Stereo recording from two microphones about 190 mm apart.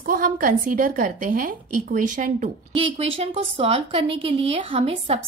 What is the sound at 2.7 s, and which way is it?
A woman's voice, 30° right (ahead or behind).